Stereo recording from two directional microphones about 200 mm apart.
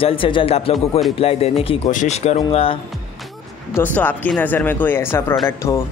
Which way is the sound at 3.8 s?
10° left (ahead or behind).